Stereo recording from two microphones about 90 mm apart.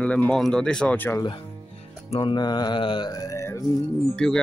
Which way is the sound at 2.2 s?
55° left (ahead or behind).